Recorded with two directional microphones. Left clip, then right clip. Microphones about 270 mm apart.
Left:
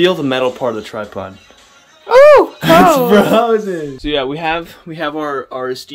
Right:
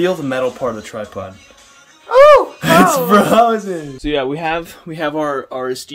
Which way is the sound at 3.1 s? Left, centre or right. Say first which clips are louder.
Even; centre.